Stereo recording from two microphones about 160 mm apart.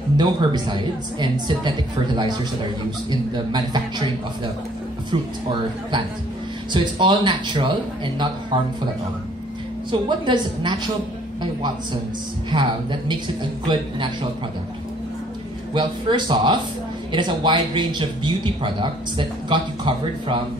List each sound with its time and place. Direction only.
0.2 s speech: 25° right (ahead or behind)
3.1 s speech: 25° right (ahead or behind)
6.7 s speech: 30° right (ahead or behind)
9.8 s speech: 30° right (ahead or behind)
12.4 s speech: 30° right (ahead or behind)
15.7 s speech: 30° right (ahead or behind)